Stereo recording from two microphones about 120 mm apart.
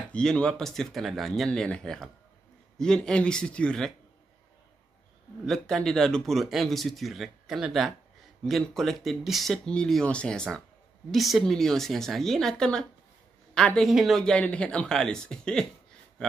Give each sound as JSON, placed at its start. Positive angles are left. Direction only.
{"t": 0.1, "sound": "a man's voice", "side_deg": 5}
{"t": 5.4, "sound": "speech", "side_deg": 5}